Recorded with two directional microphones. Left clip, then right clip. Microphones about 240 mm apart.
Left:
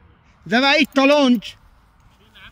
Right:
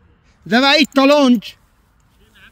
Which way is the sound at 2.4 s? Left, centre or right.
Centre.